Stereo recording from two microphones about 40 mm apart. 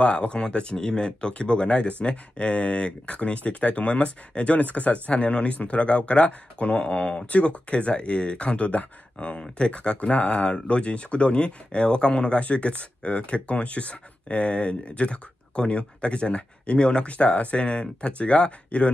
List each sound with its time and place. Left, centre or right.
0.0 s speech: left